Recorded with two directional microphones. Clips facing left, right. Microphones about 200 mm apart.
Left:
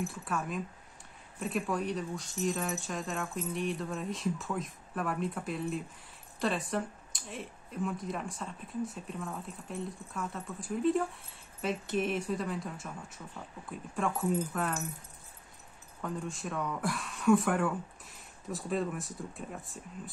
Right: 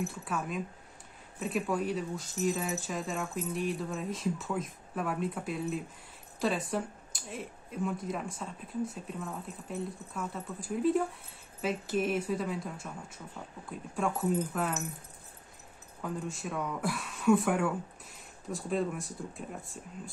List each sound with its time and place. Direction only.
0.0 s speech: centre (ahead or behind)
16.0 s speech: centre (ahead or behind)